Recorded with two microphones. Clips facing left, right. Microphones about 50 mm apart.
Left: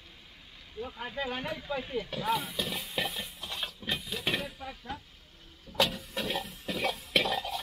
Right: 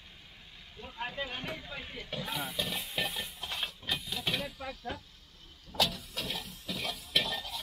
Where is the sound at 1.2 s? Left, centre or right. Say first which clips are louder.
Left 5 dB; centre.